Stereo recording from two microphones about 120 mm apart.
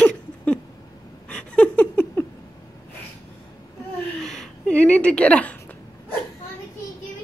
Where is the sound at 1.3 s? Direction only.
10° left (ahead or behind).